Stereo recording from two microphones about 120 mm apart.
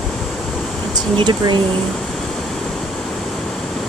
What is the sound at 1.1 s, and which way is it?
Speech, 40° right (ahead or behind).